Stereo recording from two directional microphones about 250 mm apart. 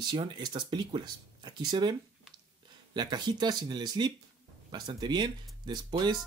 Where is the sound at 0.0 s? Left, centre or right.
Centre.